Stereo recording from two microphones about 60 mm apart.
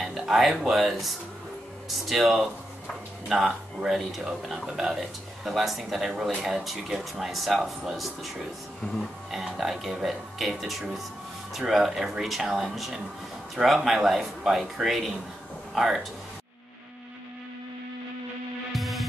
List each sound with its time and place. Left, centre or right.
0.0 s speech: centre
8.8 s speech: left
9.3 s speech: centre
18.7 s music: centre